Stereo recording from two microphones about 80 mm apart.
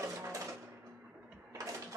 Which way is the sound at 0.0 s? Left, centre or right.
Right.